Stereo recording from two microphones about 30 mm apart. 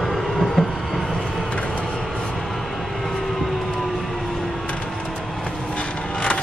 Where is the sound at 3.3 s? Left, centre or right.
Centre.